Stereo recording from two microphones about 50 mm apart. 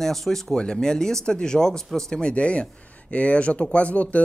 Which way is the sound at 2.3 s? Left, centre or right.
Left.